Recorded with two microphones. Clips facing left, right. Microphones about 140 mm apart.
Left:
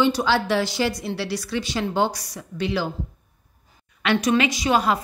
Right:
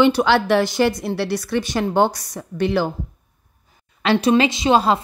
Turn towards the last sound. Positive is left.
turn(degrees=-25)  # may be behind; listen again after turning